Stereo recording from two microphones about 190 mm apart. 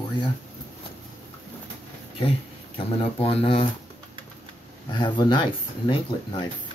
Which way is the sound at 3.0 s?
30° left (ahead or behind).